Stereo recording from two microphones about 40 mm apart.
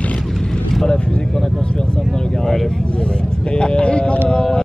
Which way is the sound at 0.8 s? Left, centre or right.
Left.